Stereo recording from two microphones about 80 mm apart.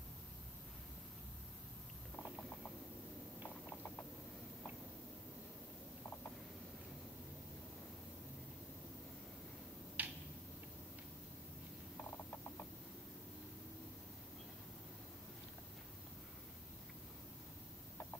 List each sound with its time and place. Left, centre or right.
10.0 s tick-tock: right